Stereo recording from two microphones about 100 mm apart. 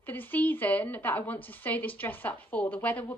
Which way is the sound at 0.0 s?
20° left (ahead or behind).